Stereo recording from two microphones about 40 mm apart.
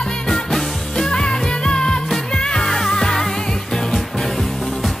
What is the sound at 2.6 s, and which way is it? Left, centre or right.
Music, centre.